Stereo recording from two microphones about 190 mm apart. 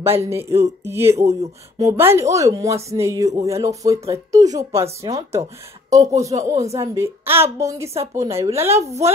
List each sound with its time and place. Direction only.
0.3 s speech: 15° right (ahead or behind)